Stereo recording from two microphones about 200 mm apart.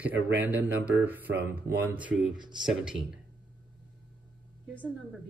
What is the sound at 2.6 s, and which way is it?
Speech, 5° right (ahead or behind).